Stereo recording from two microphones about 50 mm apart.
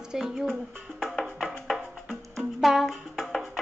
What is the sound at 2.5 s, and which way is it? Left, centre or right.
Music, centre.